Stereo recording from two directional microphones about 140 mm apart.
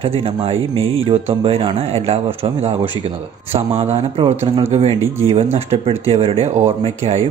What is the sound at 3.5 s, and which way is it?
Speech, 45° right (ahead or behind).